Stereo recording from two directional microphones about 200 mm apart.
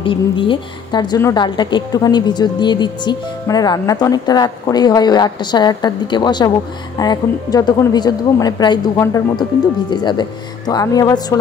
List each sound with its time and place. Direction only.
0.0 s a woman's voice: 25° left (ahead or behind)